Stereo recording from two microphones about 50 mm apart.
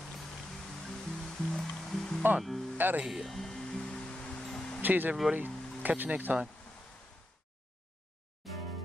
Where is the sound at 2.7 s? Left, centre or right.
Right.